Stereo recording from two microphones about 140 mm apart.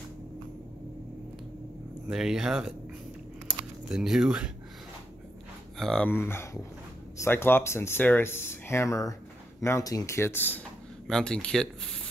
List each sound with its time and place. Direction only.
2.0 s speech: 5° right (ahead or behind)
3.4 s a sound: 5° right (ahead or behind)
5.8 s speech: 5° left (ahead or behind)